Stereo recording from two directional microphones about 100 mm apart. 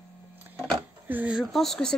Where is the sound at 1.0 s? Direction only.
15° right (ahead or behind).